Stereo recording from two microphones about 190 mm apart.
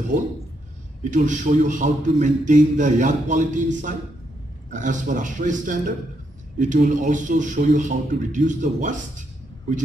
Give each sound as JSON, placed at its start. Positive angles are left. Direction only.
{"t": 1.1, "sound": "a man's voice", "side_deg": -40}